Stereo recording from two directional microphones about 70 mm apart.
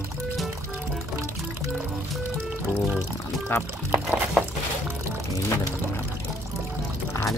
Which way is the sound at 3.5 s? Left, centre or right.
Left.